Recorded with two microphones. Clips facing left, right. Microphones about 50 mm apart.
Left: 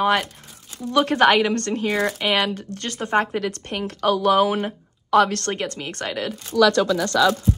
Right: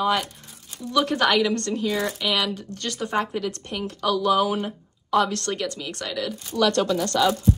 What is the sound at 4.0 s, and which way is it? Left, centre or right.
Speech, left.